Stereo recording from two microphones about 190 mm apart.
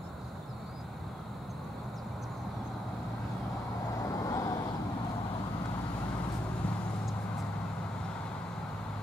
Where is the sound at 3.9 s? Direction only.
15° left (ahead or behind).